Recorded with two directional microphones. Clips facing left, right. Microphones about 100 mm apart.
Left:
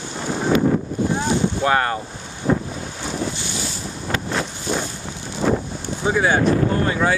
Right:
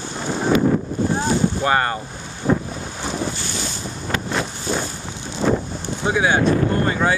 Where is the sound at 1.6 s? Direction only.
Centre (ahead or behind).